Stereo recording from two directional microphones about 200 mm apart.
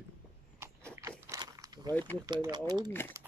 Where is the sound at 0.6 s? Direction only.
15° right (ahead or behind).